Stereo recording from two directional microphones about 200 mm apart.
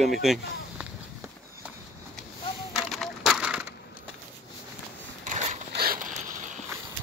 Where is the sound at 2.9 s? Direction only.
Centre (ahead or behind).